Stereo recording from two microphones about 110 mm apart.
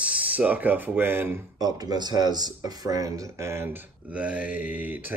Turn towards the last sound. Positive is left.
turn(degrees=-15)  # may be behind; listen again after turning